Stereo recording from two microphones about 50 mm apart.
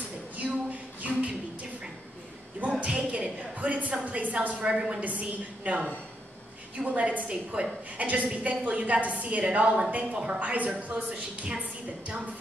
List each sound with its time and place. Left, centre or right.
0.4 s a sound: right
2.8 s a woman's voice: right
5.0 s a woman's voice: right
6.9 s a woman's voice: right